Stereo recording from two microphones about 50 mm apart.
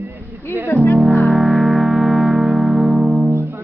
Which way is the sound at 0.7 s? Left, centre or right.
Left.